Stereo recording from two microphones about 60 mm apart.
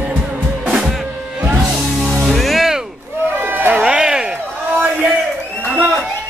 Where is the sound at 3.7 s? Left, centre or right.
Centre.